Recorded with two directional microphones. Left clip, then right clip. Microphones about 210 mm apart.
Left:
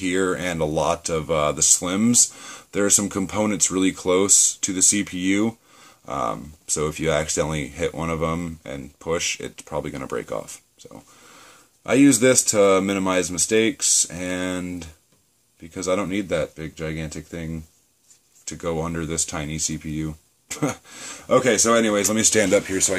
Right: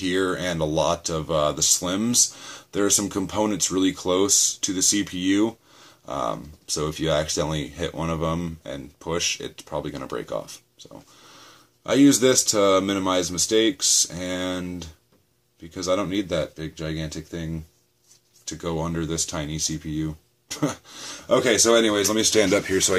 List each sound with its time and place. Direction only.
0.0 s speech: 40° left (ahead or behind)
11.8 s speech: 40° left (ahead or behind)
18.6 s speech: 40° left (ahead or behind)
22.7 s speech: 10° left (ahead or behind)